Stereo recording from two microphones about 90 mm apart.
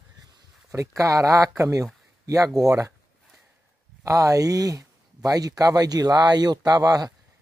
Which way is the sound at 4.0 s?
40° right (ahead or behind).